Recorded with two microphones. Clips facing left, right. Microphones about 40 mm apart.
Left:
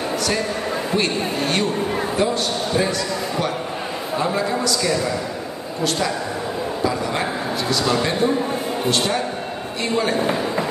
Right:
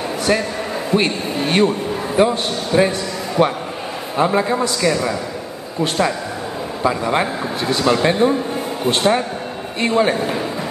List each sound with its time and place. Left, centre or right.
0.3 s a man's voice: centre
6.8 s a man's voice: right